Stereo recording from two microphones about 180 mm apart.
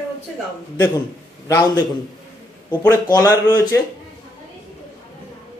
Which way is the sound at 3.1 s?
20° left (ahead or behind).